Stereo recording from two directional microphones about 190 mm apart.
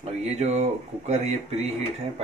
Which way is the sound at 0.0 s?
35° right (ahead or behind).